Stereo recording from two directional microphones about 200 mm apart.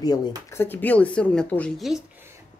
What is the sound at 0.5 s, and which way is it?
A woman's voice, 10° left (ahead or behind).